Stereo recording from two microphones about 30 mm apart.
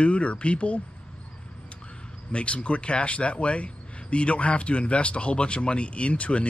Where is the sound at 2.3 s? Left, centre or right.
Left.